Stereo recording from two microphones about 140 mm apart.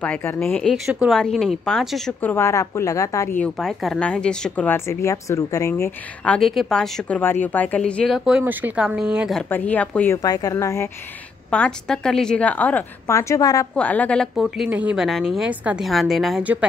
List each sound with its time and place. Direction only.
0.0 s a woman's voice: 10° left (ahead or behind)
2.2 s a woman's voice: 20° left (ahead or behind)
3.3 s speech: 5° left (ahead or behind); by 5.9 s 20° left (ahead or behind)
6.2 s speech: 5° left (ahead or behind)
8.3 s speech: 10° right (ahead or behind)
9.5 s speech: 10° left (ahead or behind)
10.2 s a woman's voice: 25° left (ahead or behind)
11.5 s speech: 5° left (ahead or behind); by 13.7 s 25° left (ahead or behind)
13.7 s a woman's voice: 10° left (ahead or behind)